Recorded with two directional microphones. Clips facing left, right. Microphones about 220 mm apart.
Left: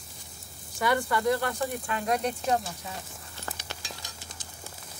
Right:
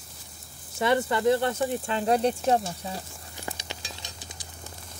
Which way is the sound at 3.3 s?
15° right (ahead or behind).